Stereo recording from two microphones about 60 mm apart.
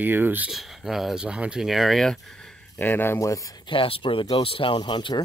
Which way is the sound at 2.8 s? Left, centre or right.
Left.